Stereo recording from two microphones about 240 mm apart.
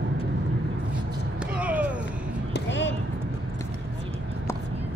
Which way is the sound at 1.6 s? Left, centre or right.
Centre.